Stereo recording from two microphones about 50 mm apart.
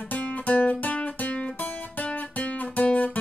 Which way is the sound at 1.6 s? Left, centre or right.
Left.